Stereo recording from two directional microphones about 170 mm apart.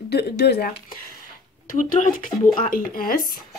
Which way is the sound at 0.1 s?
75° left (ahead or behind).